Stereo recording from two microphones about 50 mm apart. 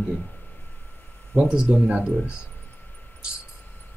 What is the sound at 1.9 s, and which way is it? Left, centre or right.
Speech, right.